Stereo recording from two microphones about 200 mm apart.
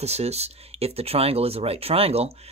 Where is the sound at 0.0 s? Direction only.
30° right (ahead or behind).